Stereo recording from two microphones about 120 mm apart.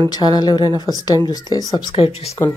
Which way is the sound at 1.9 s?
55° left (ahead or behind).